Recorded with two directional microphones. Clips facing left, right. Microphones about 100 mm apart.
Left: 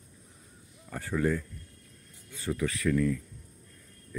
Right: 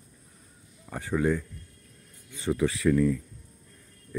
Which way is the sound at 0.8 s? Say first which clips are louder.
Right 3 dB; 10° right (ahead or behind).